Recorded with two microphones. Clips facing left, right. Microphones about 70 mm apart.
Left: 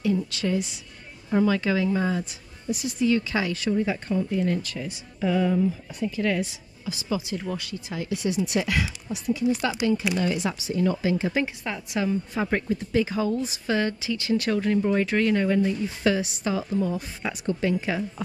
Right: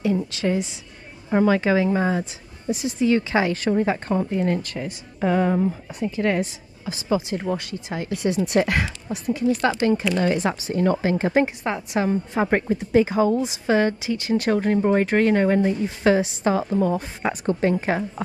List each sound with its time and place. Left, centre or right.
0.3 s a woman's voice: right
1.3 s a woman's voice: right
5.9 s speech: right
11.4 s speech: right